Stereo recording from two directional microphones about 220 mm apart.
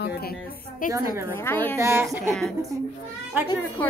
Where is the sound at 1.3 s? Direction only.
10° left (ahead or behind).